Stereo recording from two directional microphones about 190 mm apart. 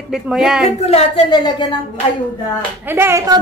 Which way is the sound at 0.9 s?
25° left (ahead or behind).